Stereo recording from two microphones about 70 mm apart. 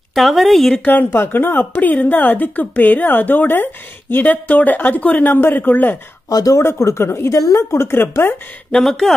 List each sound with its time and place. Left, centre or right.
0.1 s speech: centre
0.8 s a woman's voice: left
6.2 s speech: left
6.6 s speech: left
7.3 s a woman's voice: left
7.7 s speech: left
8.7 s speech: centre